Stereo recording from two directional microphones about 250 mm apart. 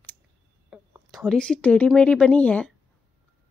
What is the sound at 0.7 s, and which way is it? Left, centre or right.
A woman's voice, centre.